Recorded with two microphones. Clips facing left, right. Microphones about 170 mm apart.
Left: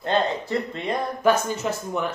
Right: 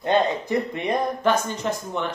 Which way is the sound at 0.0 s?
20° right (ahead or behind).